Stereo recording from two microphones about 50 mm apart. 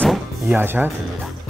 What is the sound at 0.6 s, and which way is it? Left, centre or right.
Speech, right.